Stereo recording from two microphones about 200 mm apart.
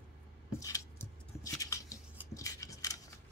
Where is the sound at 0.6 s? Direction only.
15° left (ahead or behind).